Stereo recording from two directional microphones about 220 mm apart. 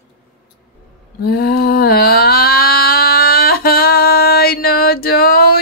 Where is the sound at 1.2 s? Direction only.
45° left (ahead or behind).